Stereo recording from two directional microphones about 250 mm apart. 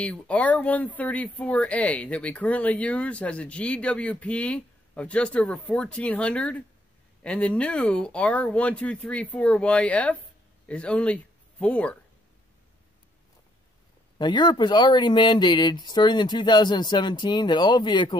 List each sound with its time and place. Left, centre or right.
0.0 s speech: centre
14.1 s speech: centre